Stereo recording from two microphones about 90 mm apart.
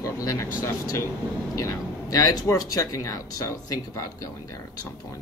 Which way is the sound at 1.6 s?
40° left (ahead or behind).